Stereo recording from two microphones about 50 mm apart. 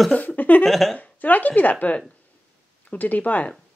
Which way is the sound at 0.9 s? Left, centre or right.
Left.